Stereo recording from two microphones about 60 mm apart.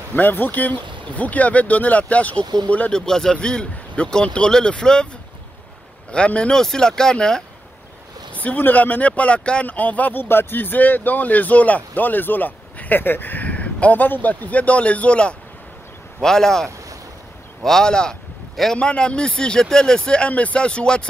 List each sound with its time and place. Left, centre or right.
0.1 s speech: left
2.9 s speech: centre
6.1 s speech: centre
8.4 s speech: left; by 16.6 s centre
17.6 s speech: centre